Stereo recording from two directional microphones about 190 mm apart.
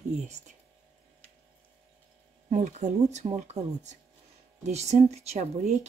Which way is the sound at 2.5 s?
40° right (ahead or behind).